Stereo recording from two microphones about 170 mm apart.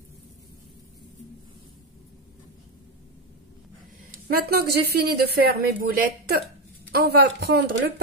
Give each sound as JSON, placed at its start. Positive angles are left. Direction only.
{"t": 4.1, "sound": "a woman's voice", "side_deg": -60}